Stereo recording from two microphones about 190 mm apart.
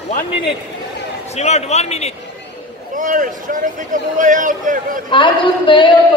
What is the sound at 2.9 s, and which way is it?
Speech, 45° right (ahead or behind).